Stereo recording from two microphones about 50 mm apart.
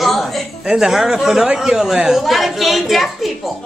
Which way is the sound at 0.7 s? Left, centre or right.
Centre.